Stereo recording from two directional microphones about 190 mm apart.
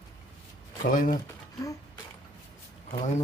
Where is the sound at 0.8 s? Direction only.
45° left (ahead or behind).